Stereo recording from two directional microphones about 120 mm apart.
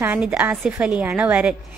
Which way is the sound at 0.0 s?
10° right (ahead or behind).